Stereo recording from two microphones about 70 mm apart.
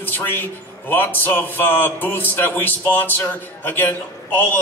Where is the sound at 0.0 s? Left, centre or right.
Left.